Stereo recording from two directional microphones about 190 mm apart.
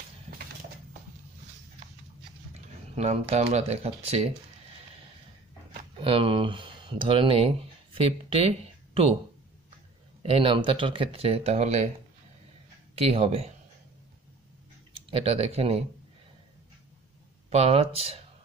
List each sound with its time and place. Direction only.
2.5 s speech: 35° right (ahead or behind)
5.7 s speech: 30° right (ahead or behind)
10.2 s speech: 30° right (ahead or behind)
12.9 s speech: 30° right (ahead or behind)
15.0 s speech: 35° right (ahead or behind)
17.5 s speech: 35° right (ahead or behind)